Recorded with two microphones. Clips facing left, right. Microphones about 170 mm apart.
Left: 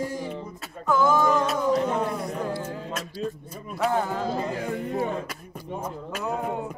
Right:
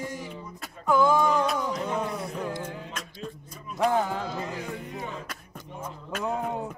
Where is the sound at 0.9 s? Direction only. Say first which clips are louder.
Left 1 dB; 15° right (ahead or behind).